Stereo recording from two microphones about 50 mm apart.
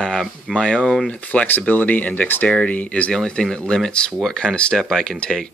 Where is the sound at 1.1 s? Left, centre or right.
Left.